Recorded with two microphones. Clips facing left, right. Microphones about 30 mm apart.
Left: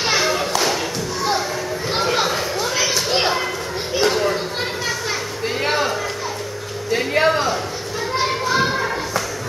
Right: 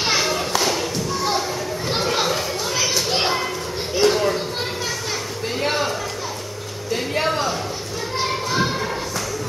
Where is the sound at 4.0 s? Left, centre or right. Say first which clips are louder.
Right 1 dB; centre.